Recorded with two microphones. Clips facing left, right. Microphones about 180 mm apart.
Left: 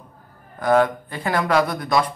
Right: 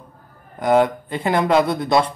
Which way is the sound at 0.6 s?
20° right (ahead or behind).